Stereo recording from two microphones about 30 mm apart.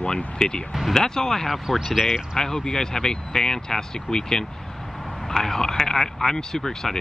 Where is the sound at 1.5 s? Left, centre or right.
Centre.